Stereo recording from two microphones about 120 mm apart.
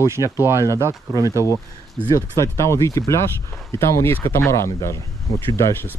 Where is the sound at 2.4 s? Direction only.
25° left (ahead or behind).